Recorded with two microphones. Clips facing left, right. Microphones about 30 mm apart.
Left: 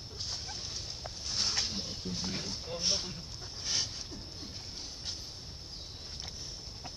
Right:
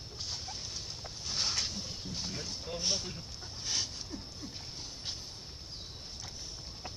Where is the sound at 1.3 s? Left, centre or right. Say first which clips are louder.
Even; centre.